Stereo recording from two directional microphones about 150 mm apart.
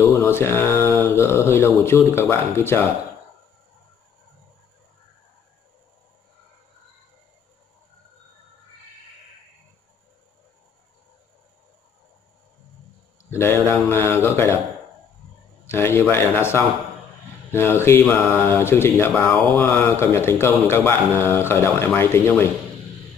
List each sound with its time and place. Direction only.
0.0 s speech: 15° left (ahead or behind)
13.3 s speech: 15° left (ahead or behind)
15.6 s speech: 15° left (ahead or behind)